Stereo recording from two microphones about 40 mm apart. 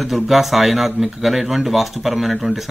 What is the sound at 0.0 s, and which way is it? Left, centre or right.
A man's voice, centre.